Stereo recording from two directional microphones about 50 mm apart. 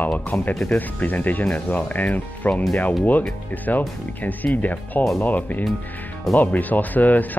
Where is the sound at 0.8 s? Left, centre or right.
Left.